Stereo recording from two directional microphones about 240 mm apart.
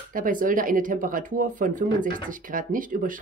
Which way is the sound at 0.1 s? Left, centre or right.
Right.